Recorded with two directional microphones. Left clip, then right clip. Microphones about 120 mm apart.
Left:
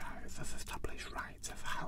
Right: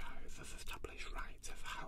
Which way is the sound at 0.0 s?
35° left (ahead or behind).